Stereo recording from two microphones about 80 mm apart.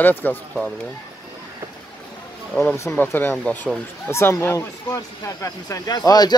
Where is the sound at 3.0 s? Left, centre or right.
Left.